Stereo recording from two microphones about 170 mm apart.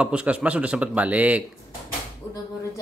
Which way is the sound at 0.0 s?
5° right (ahead or behind).